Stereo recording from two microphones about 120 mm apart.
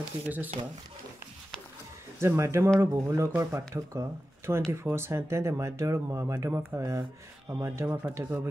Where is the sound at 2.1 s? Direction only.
25° right (ahead or behind).